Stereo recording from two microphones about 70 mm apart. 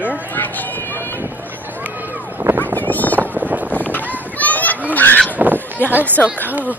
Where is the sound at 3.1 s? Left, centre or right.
Right.